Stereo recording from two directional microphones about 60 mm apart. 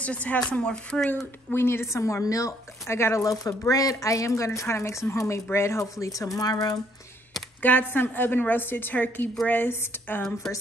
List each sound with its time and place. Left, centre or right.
0.0 s speech: left
1.5 s speech: left
2.9 s speech: left
3.2 s speech: left
7.6 s a woman's voice: left